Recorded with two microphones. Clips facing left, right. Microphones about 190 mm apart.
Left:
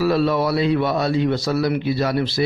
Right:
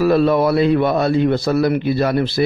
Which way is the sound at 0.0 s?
50° right (ahead or behind).